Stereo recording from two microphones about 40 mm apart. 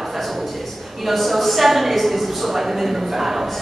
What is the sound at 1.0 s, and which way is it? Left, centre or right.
A woman's voice, centre.